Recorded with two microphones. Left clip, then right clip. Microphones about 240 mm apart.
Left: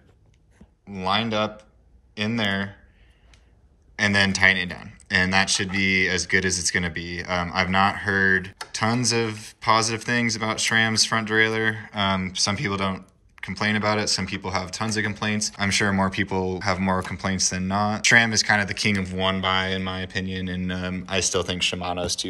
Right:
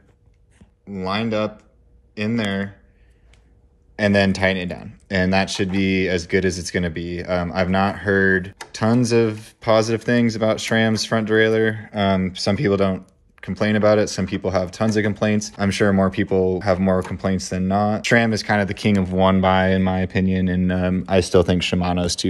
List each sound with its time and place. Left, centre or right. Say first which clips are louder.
0.9 s speech: even; centre
3.9 s speech: right 2 dB; centre; by 22.3 s right